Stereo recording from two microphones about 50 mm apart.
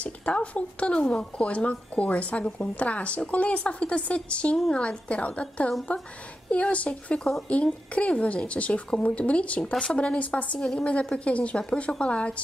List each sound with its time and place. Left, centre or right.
0.0 s a woman's voice: left